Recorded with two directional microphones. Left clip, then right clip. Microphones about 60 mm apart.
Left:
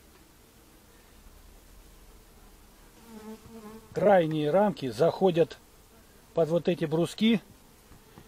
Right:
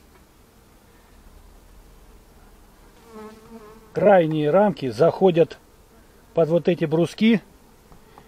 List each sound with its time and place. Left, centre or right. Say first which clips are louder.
3.9 s speech: right 6 dB; centre